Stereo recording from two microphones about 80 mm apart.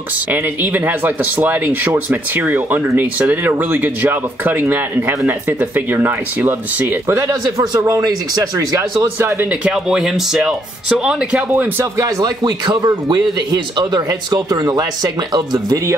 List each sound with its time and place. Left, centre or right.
0.3 s speech: right
8.0 s speech: right
9.0 s speech: right
9.5 s speech: centre
11.8 s speech: right